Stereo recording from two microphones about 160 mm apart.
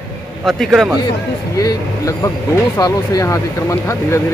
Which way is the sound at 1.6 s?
20° left (ahead or behind).